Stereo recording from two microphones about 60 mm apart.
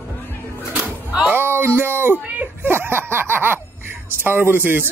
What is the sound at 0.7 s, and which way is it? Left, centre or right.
Music, centre.